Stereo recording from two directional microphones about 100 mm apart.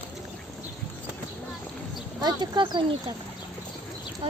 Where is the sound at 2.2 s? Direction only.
45° right (ahead or behind).